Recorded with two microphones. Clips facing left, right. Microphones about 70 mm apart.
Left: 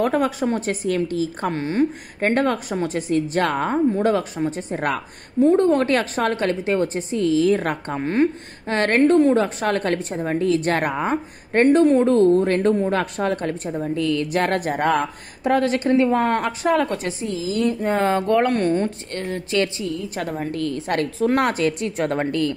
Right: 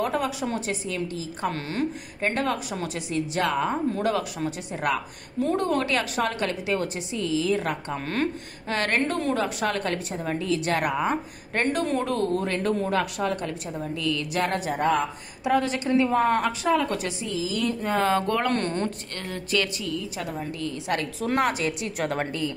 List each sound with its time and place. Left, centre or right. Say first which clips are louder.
0.0 s a woman's voice: left 6 dB; left
1.5 s speech: left 9 dB; left
2.2 s a woman's voice: left 6 dB; left
5.4 s a woman's voice: left 8 dB; left
7.9 s a woman's voice: left 10 dB; left
17.6 s speech: left 3 dB; left
18.5 s speech: left 6 dB; centre
18.9 s a woman's voice: left 6 dB; left
21.2 s a woman's voice: left 5 dB; left